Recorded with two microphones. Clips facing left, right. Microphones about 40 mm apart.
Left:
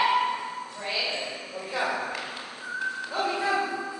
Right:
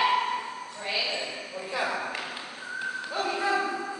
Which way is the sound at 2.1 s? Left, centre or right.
Centre.